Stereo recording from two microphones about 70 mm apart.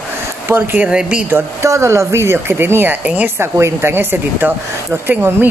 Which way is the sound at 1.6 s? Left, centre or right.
Right.